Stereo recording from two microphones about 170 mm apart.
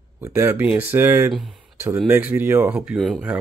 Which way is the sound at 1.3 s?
Centre (ahead or behind).